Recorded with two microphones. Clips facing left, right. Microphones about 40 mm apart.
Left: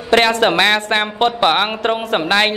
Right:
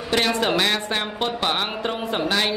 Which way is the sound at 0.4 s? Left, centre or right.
Left.